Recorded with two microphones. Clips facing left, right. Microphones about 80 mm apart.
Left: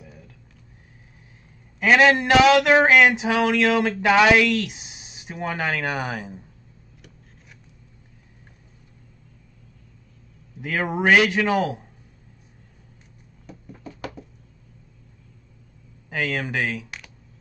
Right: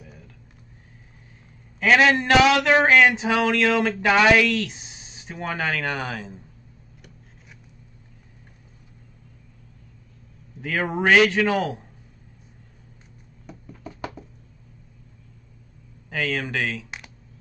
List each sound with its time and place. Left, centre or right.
1.8 s a man's voice: centre
10.6 s a man's voice: centre
13.5 s a sound: centre
16.1 s a man's voice: centre